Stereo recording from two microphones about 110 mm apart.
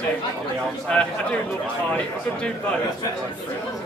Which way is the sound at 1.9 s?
10° left (ahead or behind).